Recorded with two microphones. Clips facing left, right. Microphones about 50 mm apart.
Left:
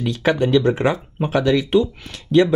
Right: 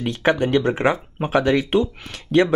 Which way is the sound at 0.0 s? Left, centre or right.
Right.